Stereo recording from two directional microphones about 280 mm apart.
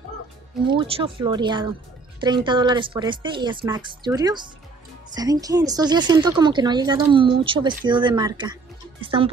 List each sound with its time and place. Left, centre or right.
0.7 s speech: centre